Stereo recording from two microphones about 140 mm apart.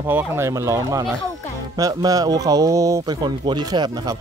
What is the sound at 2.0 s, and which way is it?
Speech, 25° right (ahead or behind).